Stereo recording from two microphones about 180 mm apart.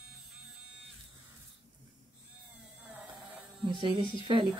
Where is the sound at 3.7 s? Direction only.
30° right (ahead or behind).